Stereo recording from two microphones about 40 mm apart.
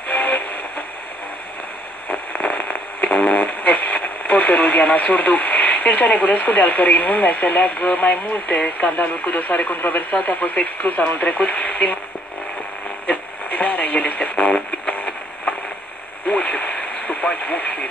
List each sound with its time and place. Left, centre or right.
0.1 s music: left
2.0 s radio: left
8.5 s speech: left
10.2 s speech: left
13.0 s radio: left
16.3 s a sound: left
16.7 s radio: left